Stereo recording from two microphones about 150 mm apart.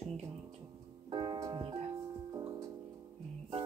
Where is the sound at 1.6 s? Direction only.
40° right (ahead or behind).